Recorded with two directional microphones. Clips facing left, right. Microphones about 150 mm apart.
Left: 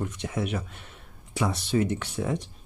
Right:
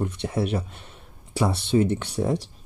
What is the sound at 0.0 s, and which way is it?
Speech, 30° right (ahead or behind).